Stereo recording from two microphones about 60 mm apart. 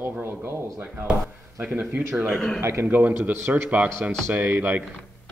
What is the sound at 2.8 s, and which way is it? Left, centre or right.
Speech, right.